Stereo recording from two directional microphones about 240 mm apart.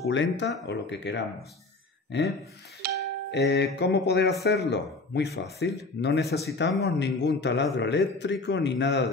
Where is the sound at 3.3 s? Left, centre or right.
Left.